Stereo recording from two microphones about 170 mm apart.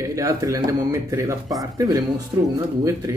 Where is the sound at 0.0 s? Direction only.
20° right (ahead or behind).